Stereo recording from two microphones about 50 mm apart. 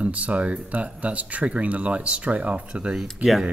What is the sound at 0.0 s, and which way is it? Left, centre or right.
Speech, right.